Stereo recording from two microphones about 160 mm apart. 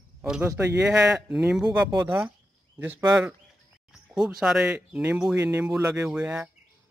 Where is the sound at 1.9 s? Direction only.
15° right (ahead or behind).